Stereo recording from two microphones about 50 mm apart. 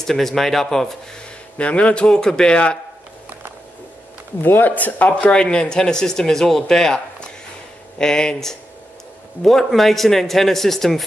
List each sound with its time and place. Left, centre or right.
0.0 s speech: centre
1.6 s a man's voice: left
4.4 s a man's voice: left; by 11.1 s centre